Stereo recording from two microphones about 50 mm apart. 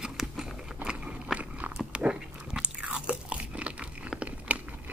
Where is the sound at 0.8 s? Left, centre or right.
Centre.